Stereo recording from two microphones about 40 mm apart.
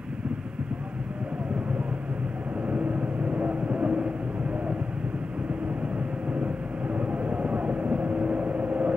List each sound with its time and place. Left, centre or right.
2.7 s vehicle: right
6.4 s vehicle: right